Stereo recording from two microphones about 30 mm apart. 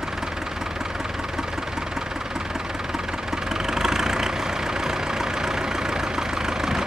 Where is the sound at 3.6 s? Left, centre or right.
Centre.